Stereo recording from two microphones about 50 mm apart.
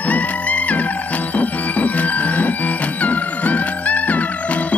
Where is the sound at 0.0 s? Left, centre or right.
Left.